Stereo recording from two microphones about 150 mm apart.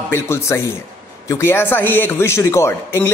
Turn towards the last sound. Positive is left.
turn(degrees=15)  # may be behind; listen again after turning